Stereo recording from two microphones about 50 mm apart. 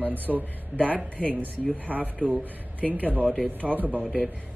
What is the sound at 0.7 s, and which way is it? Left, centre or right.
Speech, left.